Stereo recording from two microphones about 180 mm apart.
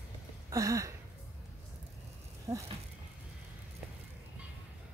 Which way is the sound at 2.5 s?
15° right (ahead or behind).